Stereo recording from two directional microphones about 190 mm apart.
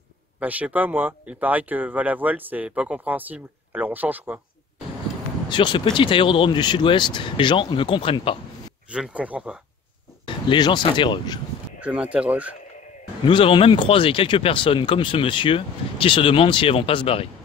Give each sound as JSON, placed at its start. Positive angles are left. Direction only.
{"t": 0.4, "sound": "speech", "side_deg": -10}
{"t": 5.5, "sound": "speech", "side_deg": 25}
{"t": 8.9, "sound": "speech", "side_deg": -5}
{"t": 10.2, "sound": "speech", "side_deg": 25}
{"t": 11.8, "sound": "speech", "side_deg": -5}
{"t": 13.2, "sound": "speech", "side_deg": 25}